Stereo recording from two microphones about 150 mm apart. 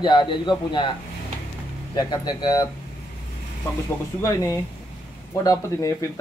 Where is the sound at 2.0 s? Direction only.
30° left (ahead or behind).